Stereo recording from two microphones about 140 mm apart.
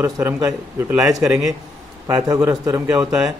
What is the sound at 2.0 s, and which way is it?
Speech, 25° right (ahead or behind).